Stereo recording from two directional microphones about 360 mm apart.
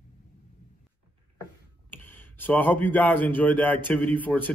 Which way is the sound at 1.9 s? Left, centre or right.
Centre.